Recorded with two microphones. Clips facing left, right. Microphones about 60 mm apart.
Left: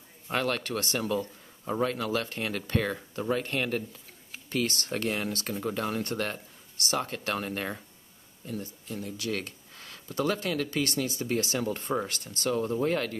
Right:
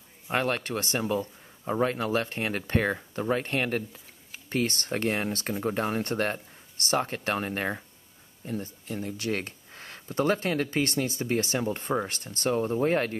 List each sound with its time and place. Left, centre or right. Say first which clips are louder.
0.3 s speech: right 2 dB; right